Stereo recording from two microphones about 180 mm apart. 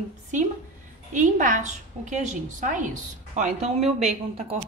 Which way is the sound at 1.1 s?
45° right (ahead or behind).